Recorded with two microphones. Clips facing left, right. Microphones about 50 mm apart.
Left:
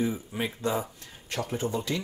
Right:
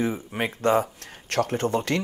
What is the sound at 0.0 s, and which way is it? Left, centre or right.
Speech, right.